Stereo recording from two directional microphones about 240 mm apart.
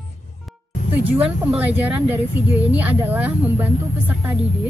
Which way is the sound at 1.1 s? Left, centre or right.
Centre.